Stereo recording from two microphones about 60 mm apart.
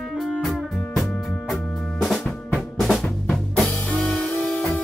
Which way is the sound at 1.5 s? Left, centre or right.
Centre.